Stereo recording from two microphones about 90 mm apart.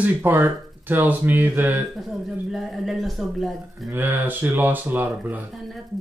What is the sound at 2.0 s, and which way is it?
A woman's voice, centre (ahead or behind).